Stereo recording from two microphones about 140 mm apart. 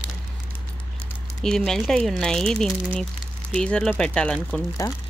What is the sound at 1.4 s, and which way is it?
Speech, 5° left (ahead or behind).